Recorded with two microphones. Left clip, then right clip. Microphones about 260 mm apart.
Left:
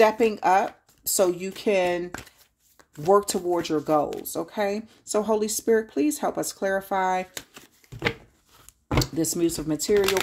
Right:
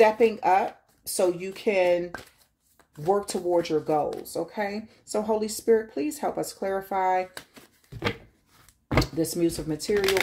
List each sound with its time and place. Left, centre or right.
0.0 s speech: left
9.0 s speech: left